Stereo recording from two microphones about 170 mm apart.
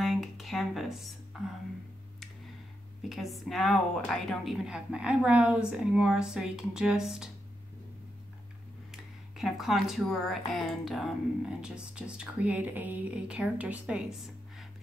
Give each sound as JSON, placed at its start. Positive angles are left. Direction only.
{"t": 0.0, "sound": "a sound", "side_deg": 0}
{"t": 1.3, "sound": "speech", "side_deg": 0}
{"t": 3.0, "sound": "speech", "side_deg": 0}
{"t": 8.9, "sound": "speech", "side_deg": 0}